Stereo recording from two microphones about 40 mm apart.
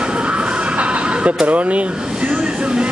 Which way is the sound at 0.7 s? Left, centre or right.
Right.